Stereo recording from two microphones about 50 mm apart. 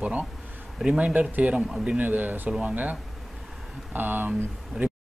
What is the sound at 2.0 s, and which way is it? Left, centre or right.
Speech, right.